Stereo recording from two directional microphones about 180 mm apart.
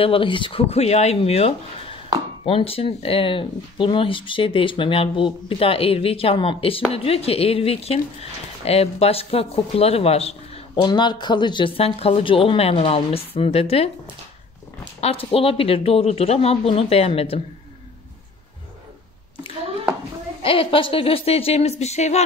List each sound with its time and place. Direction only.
0.0 s speech: 30° left (ahead or behind)
10.8 s speech: 25° left (ahead or behind)
15.0 s speech: 35° left (ahead or behind)
20.4 s speech: 30° left (ahead or behind)